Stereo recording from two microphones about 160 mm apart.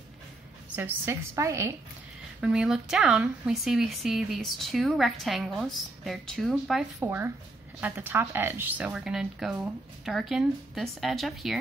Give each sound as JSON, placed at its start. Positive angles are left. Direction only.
{"t": 0.7, "sound": "a woman's voice", "side_deg": -15}
{"t": 2.4, "sound": "a woman's voice", "side_deg": -5}